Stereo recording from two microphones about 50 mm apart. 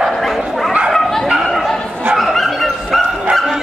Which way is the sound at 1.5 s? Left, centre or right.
Centre.